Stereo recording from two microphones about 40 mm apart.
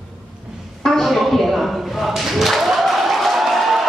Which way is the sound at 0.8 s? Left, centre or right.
Centre.